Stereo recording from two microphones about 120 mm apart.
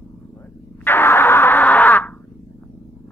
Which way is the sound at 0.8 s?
20° left (ahead or behind).